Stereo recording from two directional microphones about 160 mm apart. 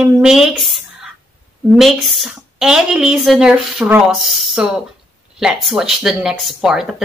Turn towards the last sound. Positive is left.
turn(degrees=0)  # may be behind; listen again after turning